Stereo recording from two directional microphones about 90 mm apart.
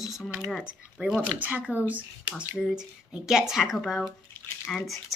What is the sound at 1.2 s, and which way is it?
Speech, 20° right (ahead or behind).